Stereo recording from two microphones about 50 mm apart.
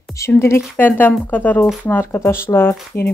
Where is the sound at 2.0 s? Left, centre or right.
Left.